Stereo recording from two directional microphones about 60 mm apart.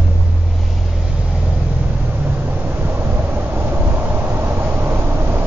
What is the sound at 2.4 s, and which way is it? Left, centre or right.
Vehicle, right.